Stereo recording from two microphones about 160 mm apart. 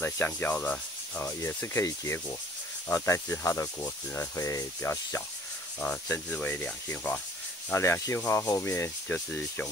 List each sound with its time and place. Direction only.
0.0 s speech: 15° left (ahead or behind)